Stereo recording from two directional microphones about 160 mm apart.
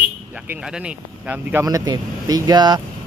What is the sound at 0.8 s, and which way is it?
Speech, 10° right (ahead or behind).